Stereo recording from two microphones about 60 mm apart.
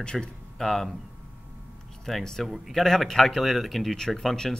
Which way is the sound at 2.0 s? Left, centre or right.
Centre.